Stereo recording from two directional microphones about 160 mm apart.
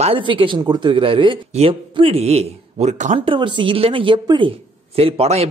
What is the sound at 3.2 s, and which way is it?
A man's voice, 30° right (ahead or behind).